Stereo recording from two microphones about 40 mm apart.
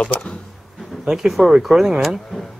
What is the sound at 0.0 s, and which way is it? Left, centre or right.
Speech, left.